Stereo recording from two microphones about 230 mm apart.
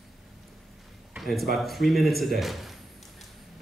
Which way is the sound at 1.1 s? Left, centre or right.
Centre.